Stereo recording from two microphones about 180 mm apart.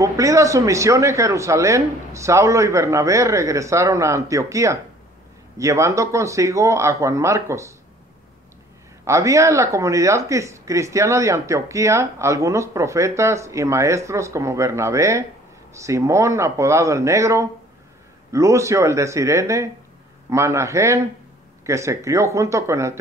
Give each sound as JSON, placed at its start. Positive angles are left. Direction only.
{"t": 0.0, "sound": "speech", "side_deg": -15}
{"t": 9.0, "sound": "speech", "side_deg": -15}